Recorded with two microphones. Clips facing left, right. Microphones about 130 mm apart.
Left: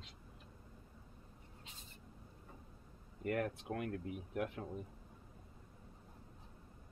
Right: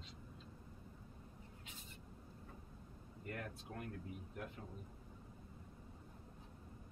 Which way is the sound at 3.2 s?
65° left (ahead or behind).